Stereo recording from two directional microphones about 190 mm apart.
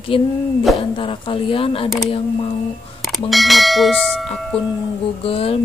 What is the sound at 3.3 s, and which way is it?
Speech, centre (ahead or behind).